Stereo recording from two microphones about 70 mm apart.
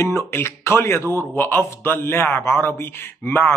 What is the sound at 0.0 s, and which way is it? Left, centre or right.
A man's voice, left.